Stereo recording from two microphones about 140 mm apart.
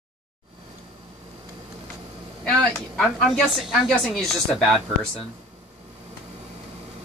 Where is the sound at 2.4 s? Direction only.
10° left (ahead or behind).